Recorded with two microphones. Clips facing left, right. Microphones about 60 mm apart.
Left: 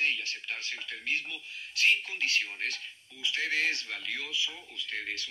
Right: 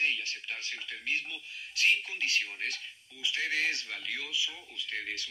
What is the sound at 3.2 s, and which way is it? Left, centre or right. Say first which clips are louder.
Speech: left 1 dB; left.